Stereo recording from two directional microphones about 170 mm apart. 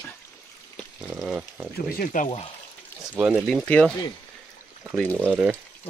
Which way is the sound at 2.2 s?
35° left (ahead or behind).